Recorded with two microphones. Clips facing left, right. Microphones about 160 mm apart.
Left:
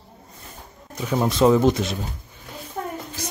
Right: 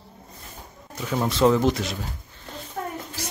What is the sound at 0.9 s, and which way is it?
Speech, 15° left (ahead or behind).